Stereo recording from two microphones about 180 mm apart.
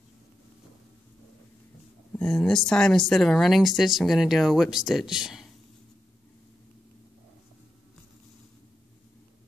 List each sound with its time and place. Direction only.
2.1 s speech: 5° left (ahead or behind)